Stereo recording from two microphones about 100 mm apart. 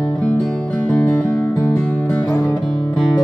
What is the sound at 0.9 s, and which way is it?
Music, 10° left (ahead or behind).